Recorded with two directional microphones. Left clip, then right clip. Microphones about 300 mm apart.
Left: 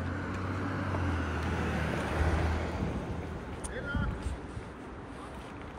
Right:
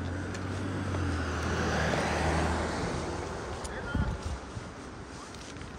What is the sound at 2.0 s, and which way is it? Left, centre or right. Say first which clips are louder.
Vehicle: right 4 dB; right.